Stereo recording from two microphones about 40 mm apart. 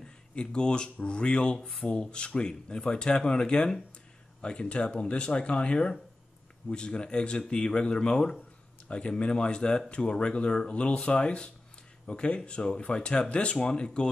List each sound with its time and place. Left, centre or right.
0.4 s speech: left